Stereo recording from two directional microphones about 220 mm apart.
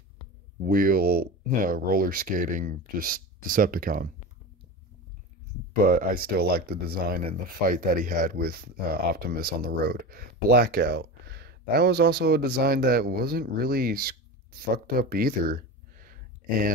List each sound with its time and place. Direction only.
0.7 s speech: 40° right (ahead or behind)
5.8 s speech: 40° right (ahead or behind)